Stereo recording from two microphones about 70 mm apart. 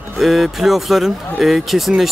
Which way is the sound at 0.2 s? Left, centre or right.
Centre.